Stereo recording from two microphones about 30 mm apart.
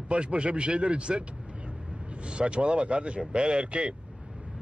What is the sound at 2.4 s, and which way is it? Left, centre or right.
Speech, right.